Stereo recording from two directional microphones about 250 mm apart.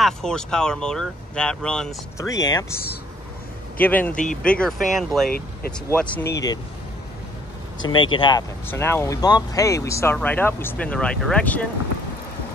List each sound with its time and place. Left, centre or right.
0.0 s speech: centre
2.2 s speech: centre
3.8 s speech: centre
4.2 s speech: left
4.5 s speech: centre
7.9 s speech: centre